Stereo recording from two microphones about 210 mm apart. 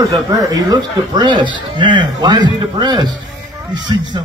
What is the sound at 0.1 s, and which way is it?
A man's voice, 15° right (ahead or behind).